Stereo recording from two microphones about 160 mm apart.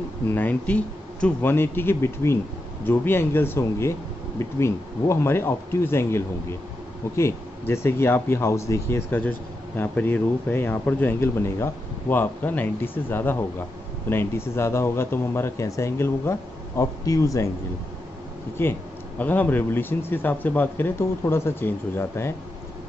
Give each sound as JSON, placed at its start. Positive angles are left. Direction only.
{"t": 0.3, "sound": "speech", "side_deg": 10}
{"t": 18.6, "sound": "speech", "side_deg": 15}